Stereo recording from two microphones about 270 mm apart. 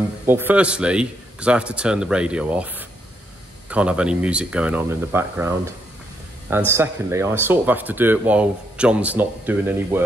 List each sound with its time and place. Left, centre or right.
0.3 s speech: centre